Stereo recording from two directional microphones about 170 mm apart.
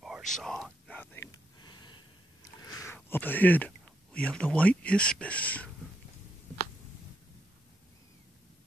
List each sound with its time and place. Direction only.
0.0 s whispering: centre (ahead or behind)
1.6 s a sound: 25° left (ahead or behind)
2.6 s speech: 20° left (ahead or behind)